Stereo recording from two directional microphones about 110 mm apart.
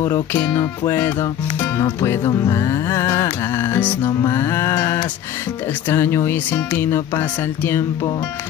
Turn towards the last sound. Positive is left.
turn(degrees=20)  # may be behind; listen again after turning